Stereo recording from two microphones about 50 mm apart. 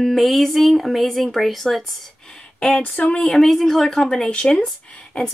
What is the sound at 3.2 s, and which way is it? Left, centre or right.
A woman's voice, centre.